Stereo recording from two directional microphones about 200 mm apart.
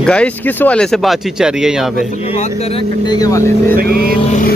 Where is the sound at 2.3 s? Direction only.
30° left (ahead or behind).